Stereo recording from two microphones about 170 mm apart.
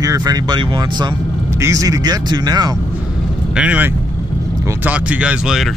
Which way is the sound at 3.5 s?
10° right (ahead or behind).